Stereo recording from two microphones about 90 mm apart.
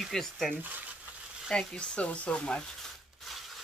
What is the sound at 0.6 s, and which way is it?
Speech, 20° right (ahead or behind).